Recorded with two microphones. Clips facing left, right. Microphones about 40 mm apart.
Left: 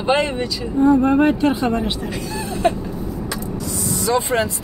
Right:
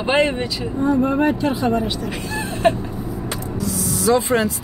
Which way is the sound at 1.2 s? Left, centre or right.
Left.